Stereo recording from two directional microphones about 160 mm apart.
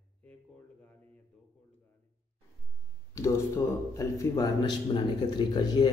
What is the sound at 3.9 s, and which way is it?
A man's voice, 20° left (ahead or behind).